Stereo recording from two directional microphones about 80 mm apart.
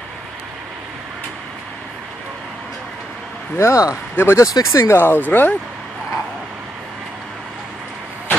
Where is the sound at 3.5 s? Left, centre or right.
Left.